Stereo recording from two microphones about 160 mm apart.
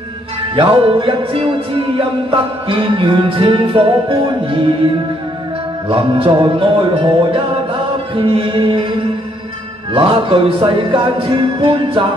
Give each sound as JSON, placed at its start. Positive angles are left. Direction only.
{"t": 0.6, "sound": "music", "side_deg": -35}
{"t": 5.9, "sound": "music", "side_deg": -35}
{"t": 9.9, "sound": "music", "side_deg": -30}